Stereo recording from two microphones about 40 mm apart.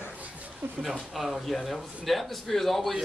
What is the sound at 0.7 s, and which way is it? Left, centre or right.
Speech, centre.